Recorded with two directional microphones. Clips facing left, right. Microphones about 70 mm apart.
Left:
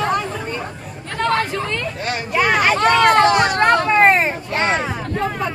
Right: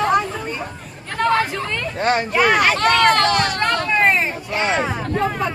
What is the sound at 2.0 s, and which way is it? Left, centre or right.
Speech, right.